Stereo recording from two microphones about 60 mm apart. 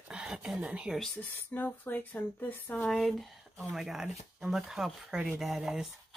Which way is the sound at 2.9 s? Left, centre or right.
Centre.